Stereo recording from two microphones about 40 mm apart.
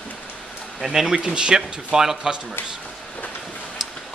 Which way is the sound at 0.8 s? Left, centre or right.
Centre.